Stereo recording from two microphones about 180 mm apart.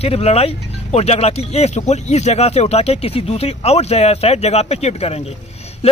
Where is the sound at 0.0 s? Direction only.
35° left (ahead or behind).